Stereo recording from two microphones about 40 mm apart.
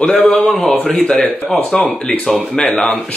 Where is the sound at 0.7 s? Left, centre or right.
Left.